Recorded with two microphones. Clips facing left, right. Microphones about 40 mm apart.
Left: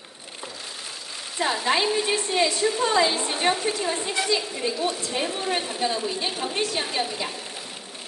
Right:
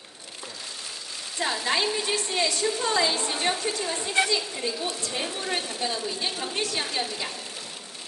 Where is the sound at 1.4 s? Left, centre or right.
Centre.